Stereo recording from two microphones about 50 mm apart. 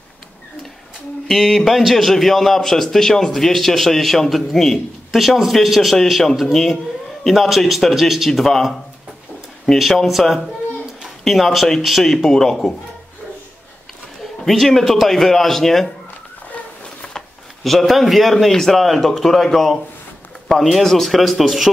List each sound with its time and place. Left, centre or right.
1.2 s a man's voice: centre
8.3 s a man's voice: centre
9.8 s a man's voice: centre
14.4 s a man's voice: centre
17.6 s a man's voice: centre
20.8 s a man's voice: centre